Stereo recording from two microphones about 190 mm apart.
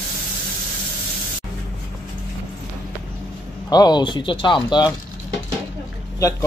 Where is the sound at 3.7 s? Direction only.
20° left (ahead or behind).